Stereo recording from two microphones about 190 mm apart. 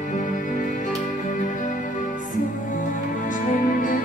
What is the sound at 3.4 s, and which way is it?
Music, 45° left (ahead or behind).